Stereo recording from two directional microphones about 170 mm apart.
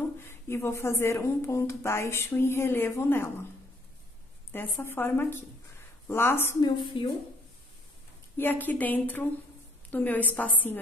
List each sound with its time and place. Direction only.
0.2 s speech: 15° left (ahead or behind)
4.5 s speech: 10° left (ahead or behind)
6.9 s speech: 30° left (ahead or behind)
8.4 s speech: 10° left (ahead or behind)